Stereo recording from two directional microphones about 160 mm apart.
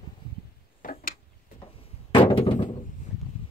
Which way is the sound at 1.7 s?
35° left (ahead or behind).